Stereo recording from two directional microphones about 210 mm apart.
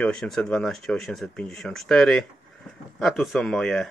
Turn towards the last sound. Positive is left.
turn(degrees=5)  # may be behind; listen again after turning